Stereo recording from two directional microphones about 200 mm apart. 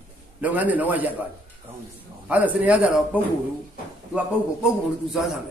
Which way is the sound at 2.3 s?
10° right (ahead or behind).